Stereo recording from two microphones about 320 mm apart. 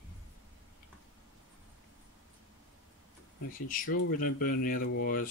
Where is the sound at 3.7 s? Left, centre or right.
Left.